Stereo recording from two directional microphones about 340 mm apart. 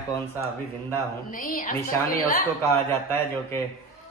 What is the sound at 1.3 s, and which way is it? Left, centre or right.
A woman's voice, left.